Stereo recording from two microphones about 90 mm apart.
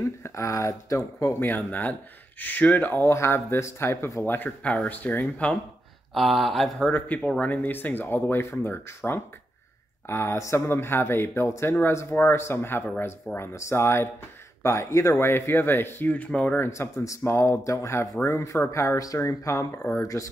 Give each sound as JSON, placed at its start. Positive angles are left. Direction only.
{"t": 0.0, "sound": "speech", "side_deg": 35}
{"t": 1.4, "sound": "speech", "side_deg": 20}
{"t": 6.1, "sound": "speech", "side_deg": 0}
{"t": 16.6, "sound": "speech", "side_deg": 30}